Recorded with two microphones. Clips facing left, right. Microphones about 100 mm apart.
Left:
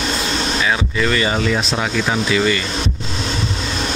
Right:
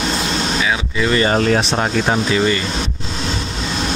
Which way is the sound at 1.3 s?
45° right (ahead or behind).